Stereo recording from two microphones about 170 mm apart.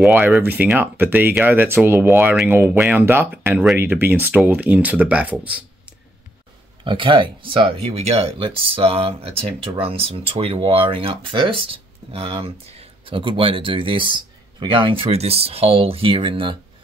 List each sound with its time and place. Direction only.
0.0 s speech: 5° right (ahead or behind)
6.8 s speech: 30° right (ahead or behind)